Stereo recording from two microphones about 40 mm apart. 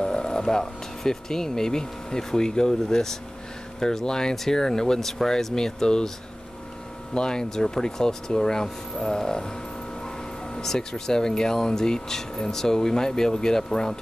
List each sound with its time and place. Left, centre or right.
0.0 s speech: centre
7.2 s speech: centre